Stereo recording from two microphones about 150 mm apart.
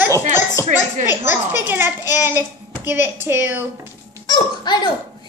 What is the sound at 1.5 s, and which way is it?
Speech, 15° right (ahead or behind).